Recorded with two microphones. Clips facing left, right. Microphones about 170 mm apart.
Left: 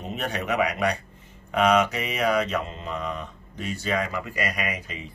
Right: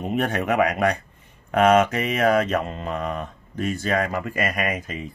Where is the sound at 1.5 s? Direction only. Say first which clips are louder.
Right 4 dB; 50° right (ahead or behind).